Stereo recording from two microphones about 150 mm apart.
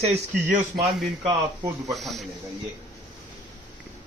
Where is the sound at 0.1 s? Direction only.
55° right (ahead or behind).